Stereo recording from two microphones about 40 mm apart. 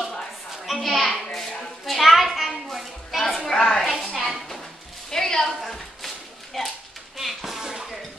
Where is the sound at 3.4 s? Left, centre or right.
Centre.